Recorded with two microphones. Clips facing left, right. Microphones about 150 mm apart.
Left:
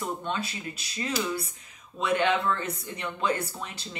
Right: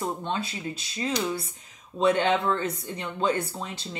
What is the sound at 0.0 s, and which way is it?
Speech, 30° right (ahead or behind).